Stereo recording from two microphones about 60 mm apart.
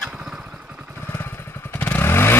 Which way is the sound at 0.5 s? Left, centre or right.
Right.